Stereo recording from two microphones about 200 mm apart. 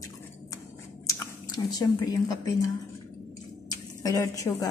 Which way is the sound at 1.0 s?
15° left (ahead or behind).